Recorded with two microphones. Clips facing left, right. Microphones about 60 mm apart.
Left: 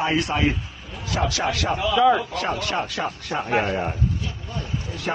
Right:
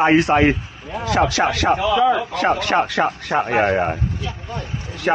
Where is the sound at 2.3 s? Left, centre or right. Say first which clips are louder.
Right 7 dB; right.